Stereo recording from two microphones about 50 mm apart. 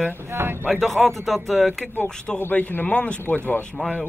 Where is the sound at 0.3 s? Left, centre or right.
Right.